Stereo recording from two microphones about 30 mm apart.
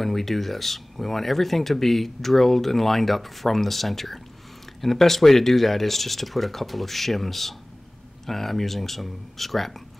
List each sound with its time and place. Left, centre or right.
0.0 s speech: centre